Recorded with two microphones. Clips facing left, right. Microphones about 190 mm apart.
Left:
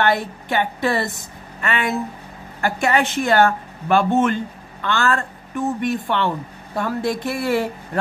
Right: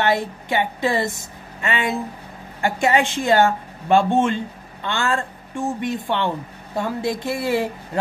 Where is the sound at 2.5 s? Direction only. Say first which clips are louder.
Right 1 dB; 25° right (ahead or behind).